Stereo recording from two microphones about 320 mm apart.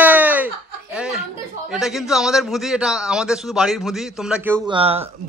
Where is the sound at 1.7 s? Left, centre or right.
Centre.